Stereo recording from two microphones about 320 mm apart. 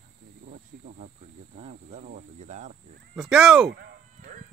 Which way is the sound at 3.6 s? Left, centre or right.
Right.